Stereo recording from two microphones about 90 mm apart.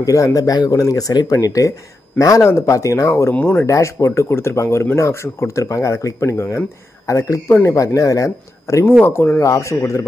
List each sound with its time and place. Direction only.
0.0 s speech: 40° left (ahead or behind)
3.3 s speech: 15° left (ahead or behind)
3.6 s speech: 35° left (ahead or behind)
9.0 s speech: 25° left (ahead or behind)
9.4 s speech: 35° left (ahead or behind)